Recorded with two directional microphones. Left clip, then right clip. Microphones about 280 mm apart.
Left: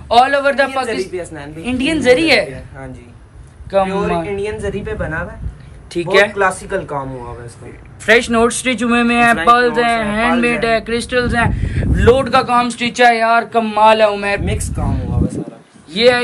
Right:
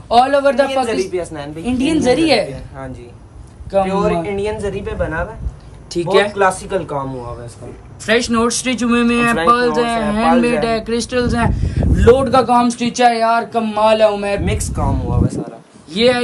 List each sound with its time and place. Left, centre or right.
0.1 s speech: centre
4.3 s a woman's voice: right
5.9 s speech: centre
15.9 s speech: centre